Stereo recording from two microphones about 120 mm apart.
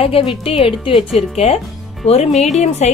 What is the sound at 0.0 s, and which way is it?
Speech, 50° left (ahead or behind).